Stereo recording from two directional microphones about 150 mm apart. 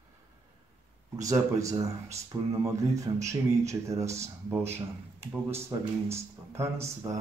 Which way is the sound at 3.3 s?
20° right (ahead or behind).